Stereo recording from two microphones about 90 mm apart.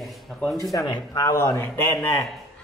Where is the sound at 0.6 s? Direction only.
40° left (ahead or behind).